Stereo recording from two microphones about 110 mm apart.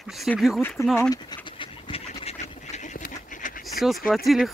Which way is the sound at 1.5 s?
65° left (ahead or behind).